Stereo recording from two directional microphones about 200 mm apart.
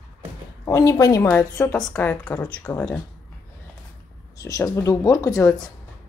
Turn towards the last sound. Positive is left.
turn(degrees=15)  # may be behind; listen again after turning